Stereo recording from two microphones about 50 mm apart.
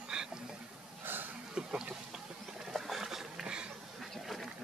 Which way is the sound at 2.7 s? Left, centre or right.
Centre.